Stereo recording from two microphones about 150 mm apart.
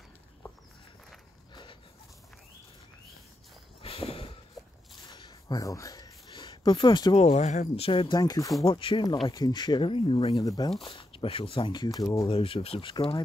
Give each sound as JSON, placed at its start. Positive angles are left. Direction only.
{"t": 1.5, "sound": "dog", "side_deg": 30}
{"t": 3.8, "sound": "walk", "side_deg": 40}
{"t": 5.0, "sound": "a sound", "side_deg": 30}
{"t": 7.2, "sound": "speech", "side_deg": 50}
{"t": 8.2, "sound": "speech", "side_deg": 25}
{"t": 8.6, "sound": "speech", "side_deg": 35}
{"t": 10.3, "sound": "speech", "side_deg": 25}
{"t": 10.8, "sound": "speech", "side_deg": 40}
{"t": 12.3, "sound": "speech", "side_deg": 40}